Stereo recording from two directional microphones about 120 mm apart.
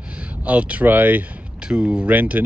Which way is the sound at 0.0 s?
10° right (ahead or behind).